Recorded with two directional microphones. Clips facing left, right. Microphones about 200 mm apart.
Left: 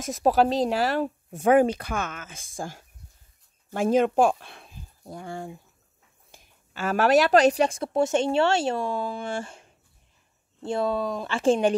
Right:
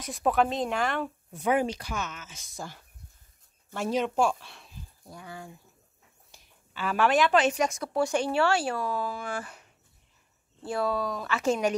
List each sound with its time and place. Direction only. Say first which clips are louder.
0.0 s speech: left 4 dB; 40° left (ahead or behind)
6.3 s speech: left 3 dB; 45° left (ahead or behind); by 11.7 s 30° left (ahead or behind)